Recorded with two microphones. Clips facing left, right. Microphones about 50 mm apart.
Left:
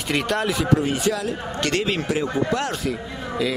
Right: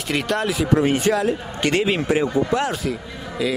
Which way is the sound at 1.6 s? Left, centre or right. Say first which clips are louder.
Right 3 dB; centre.